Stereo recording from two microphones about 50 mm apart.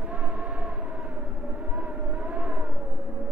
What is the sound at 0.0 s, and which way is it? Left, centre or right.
Vehicle, right.